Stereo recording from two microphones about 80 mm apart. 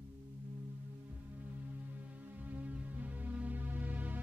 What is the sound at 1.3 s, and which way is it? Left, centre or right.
Music, right.